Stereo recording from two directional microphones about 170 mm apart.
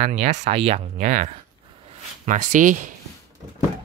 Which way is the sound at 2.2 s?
50° right (ahead or behind).